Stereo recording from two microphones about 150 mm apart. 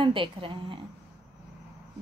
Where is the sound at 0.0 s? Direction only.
35° right (ahead or behind).